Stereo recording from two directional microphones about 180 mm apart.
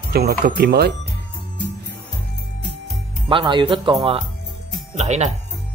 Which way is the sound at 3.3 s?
25° right (ahead or behind).